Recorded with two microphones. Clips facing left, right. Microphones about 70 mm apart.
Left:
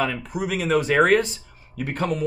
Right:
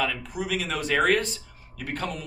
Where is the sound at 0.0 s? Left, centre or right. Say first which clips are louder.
Left 3 dB; left.